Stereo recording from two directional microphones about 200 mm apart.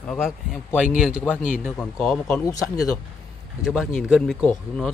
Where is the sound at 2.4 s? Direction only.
15° left (ahead or behind).